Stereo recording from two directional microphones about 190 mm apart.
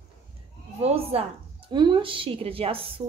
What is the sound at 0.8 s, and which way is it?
A woman's voice, 30° right (ahead or behind).